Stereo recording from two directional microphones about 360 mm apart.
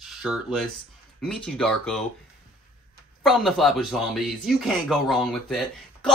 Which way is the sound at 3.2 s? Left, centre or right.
Centre.